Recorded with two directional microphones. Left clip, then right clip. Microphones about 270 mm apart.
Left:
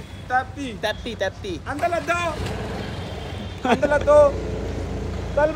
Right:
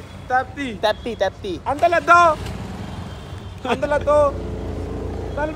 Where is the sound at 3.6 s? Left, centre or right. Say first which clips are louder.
Left 2 dB; left.